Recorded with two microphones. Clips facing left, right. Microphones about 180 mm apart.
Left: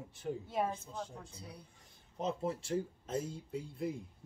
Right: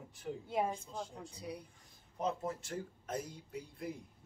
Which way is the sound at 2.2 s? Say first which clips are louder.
Left 1 dB; 25° left (ahead or behind).